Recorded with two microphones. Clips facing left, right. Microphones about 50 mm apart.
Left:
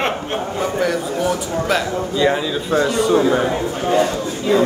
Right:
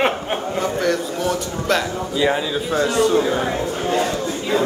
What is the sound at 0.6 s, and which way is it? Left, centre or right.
A man's voice, centre.